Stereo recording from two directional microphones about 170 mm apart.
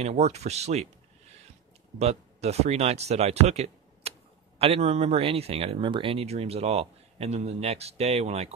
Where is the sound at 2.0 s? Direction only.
40° right (ahead or behind).